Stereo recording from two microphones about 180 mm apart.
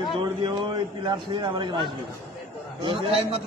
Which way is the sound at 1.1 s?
25° right (ahead or behind).